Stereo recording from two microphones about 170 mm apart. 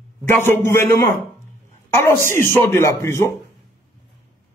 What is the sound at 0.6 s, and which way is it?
Speech, 15° left (ahead or behind).